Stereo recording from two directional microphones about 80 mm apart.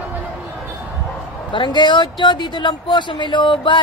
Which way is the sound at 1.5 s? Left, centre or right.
Left.